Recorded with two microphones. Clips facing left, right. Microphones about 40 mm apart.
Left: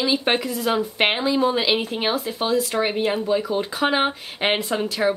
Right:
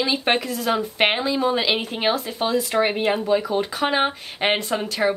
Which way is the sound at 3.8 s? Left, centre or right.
Centre.